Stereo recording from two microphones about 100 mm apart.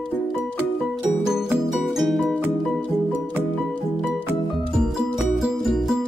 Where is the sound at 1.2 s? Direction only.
5° right (ahead or behind).